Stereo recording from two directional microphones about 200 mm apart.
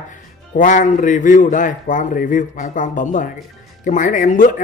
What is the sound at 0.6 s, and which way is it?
Speech, 40° left (ahead or behind).